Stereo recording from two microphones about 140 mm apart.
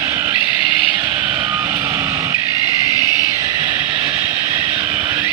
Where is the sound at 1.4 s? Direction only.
15° right (ahead or behind).